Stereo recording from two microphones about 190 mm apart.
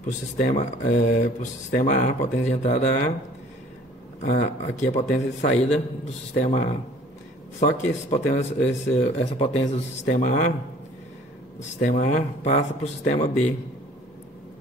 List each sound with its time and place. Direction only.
0.0 s speech: 40° left (ahead or behind)
4.2 s speech: 40° left (ahead or behind)
11.8 s speech: 40° left (ahead or behind)